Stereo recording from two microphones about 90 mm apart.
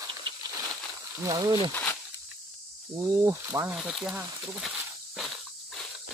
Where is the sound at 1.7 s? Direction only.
20° left (ahead or behind).